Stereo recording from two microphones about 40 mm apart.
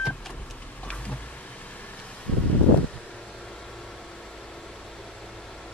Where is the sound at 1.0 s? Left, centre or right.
Left.